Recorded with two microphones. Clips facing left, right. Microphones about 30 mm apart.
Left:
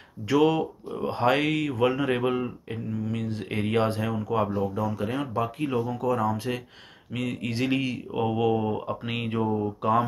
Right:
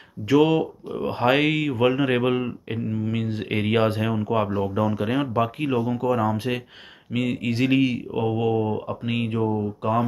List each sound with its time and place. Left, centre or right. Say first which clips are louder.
0.2 s speech: right 3 dB; centre